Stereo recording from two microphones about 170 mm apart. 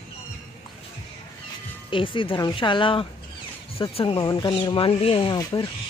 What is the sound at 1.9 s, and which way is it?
Speech, 30° left (ahead or behind).